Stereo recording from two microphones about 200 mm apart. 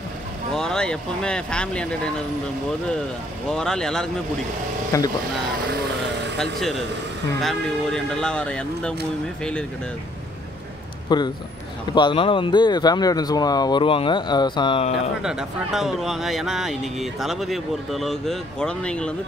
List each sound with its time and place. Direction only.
0.6 s speech: 5° left (ahead or behind)
3.4 s speech: 5° left (ahead or behind)
4.9 s speech: 15° left (ahead or behind)
6.3 s speech: centre (ahead or behind)
11.1 s speech: 20° left (ahead or behind)
15.2 s speech: 5° right (ahead or behind)